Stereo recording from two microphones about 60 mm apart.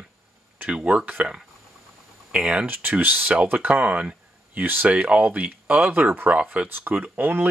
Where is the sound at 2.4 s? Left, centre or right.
Centre.